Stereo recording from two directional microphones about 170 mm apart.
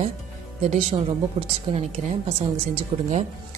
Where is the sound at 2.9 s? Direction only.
35° right (ahead or behind).